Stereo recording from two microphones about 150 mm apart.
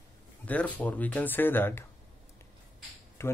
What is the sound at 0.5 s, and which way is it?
Speech, 10° left (ahead or behind).